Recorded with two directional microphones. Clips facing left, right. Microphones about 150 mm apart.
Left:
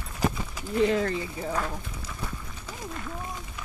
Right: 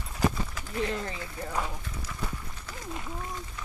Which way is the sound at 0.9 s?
75° left (ahead or behind).